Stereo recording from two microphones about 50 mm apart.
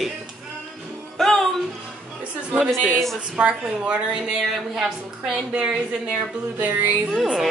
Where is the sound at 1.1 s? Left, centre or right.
Centre.